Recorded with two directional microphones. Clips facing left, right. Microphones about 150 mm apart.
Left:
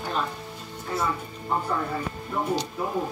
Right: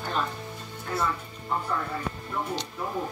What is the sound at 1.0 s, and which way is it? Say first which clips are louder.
Music: left 2 dB; 20° left (ahead or behind).